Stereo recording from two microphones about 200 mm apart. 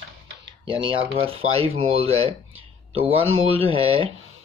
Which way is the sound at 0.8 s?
30° right (ahead or behind).